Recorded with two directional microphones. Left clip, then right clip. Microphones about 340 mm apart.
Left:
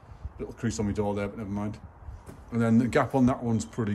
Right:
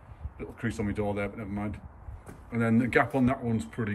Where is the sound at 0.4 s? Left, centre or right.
Centre.